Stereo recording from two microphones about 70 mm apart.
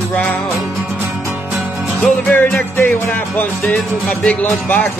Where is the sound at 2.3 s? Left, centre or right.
Left.